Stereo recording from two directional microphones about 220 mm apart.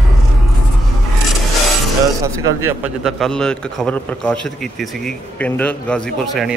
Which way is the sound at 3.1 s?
Centre (ahead or behind).